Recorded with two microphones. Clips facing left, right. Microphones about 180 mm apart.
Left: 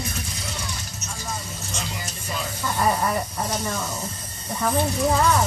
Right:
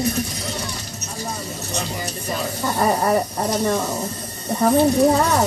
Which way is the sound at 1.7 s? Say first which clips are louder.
Right 6 dB; 40° right (ahead or behind).